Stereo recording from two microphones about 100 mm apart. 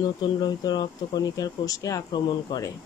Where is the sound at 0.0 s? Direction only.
45° left (ahead or behind).